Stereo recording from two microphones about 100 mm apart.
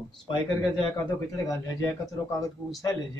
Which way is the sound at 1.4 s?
35° left (ahead or behind).